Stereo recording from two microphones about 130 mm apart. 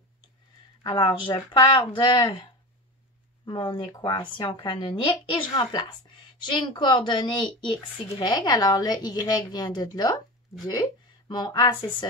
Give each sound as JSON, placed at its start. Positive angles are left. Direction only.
{"t": 0.8, "sound": "speech", "side_deg": 35}
{"t": 3.4, "sound": "speech", "side_deg": 40}